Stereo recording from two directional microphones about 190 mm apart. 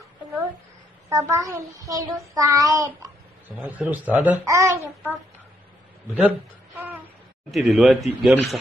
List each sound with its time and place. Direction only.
1.1 s a child's voice: 15° right (ahead or behind)
6.2 s speech: 5° right (ahead or behind)